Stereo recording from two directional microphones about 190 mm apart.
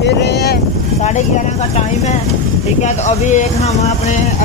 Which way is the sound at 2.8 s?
40° left (ahead or behind).